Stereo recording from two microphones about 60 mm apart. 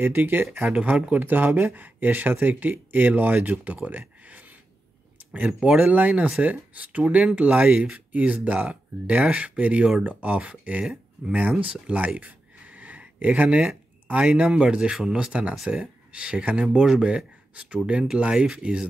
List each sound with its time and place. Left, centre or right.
0.0 s speech: right
1.2 s speech: right
11.6 s a sound: right
14.1 s speech: centre